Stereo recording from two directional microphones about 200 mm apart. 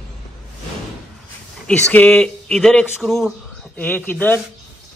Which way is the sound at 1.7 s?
10° left (ahead or behind).